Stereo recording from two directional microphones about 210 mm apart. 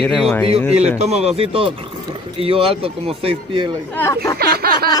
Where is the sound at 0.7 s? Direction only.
30° right (ahead or behind).